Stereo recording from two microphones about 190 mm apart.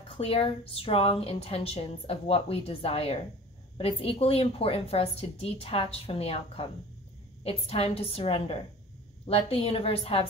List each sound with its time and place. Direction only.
0.1 s a woman's voice: 30° left (ahead or behind)